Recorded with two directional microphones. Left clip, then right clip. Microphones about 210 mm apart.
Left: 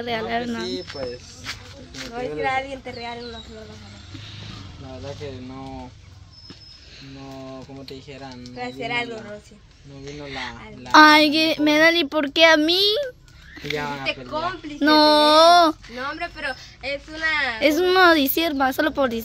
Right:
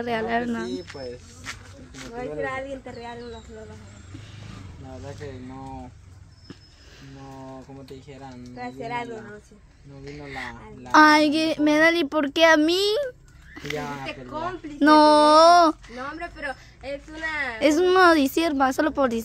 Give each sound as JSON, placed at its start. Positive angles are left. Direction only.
{"t": 0.0, "sound": "speech", "side_deg": -20}
{"t": 2.4, "sound": "a woman's voice", "side_deg": 10}
{"t": 7.2, "sound": "speech", "side_deg": -15}
{"t": 8.5, "sound": "a woman's voice", "side_deg": 15}
{"t": 10.0, "sound": "speech", "side_deg": -10}
{"t": 13.7, "sound": "speech", "side_deg": -10}
{"t": 14.0, "sound": "a woman's voice", "side_deg": 10}
{"t": 14.8, "sound": "a woman's voice", "side_deg": -25}
{"t": 16.0, "sound": "a woman's voice", "side_deg": 10}
{"t": 17.6, "sound": "a woman's voice", "side_deg": -20}